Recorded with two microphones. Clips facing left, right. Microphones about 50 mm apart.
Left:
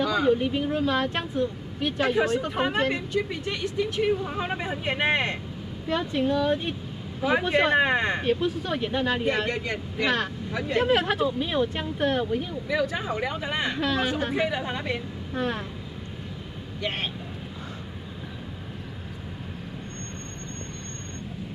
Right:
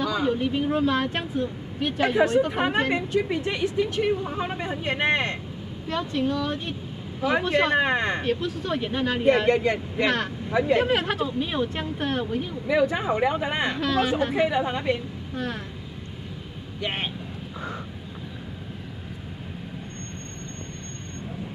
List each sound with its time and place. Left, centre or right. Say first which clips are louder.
0.0 s speech: left 2 dB; centre; by 3.7 s right
3.7 s speech: left 2 dB; centre
5.9 s speech: left 1 dB; centre
10.0 s speech: even; centre
12.6 s speech: right 7 dB; centre
13.7 s speech: right 2 dB; centre
14.2 s speech: right 4 dB; centre
15.3 s speech: left 3 dB; left
16.8 s speech: right 1 dB; centre